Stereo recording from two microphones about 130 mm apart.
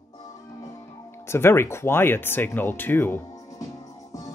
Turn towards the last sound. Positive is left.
turn(degrees=25)  # may be behind; listen again after turning